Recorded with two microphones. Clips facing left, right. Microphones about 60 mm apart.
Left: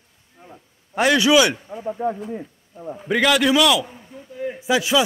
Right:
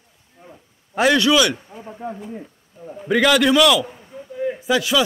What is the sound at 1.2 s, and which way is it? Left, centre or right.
Speech, centre.